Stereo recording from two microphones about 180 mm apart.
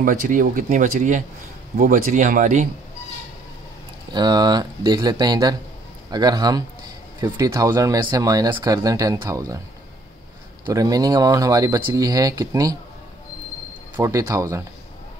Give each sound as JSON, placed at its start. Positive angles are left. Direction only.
{"t": 0.0, "sound": "speech", "side_deg": -50}
{"t": 4.1, "sound": "speech", "side_deg": -25}
{"t": 10.7, "sound": "speech", "side_deg": -20}
{"t": 13.9, "sound": "speech", "side_deg": -15}